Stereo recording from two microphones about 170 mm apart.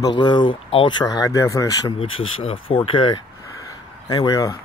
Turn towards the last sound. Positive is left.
turn(degrees=20)  # may be behind; listen again after turning